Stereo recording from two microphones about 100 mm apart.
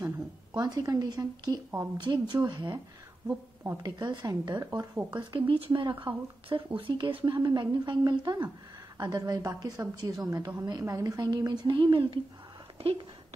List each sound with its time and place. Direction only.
0.5 s a woman's voice: 45° right (ahead or behind)
2.3 s a woman's voice: 40° right (ahead or behind)
3.6 s a woman's voice: 30° right (ahead or behind)
4.0 s a woman's voice: 45° right (ahead or behind)
5.1 s a woman's voice: 55° right (ahead or behind)
12.7 s speech: 70° right (ahead or behind)